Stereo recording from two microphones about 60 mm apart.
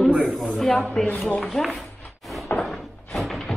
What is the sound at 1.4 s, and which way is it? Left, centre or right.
Speech, centre.